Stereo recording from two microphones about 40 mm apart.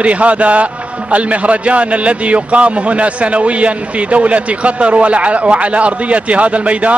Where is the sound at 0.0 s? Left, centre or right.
Right.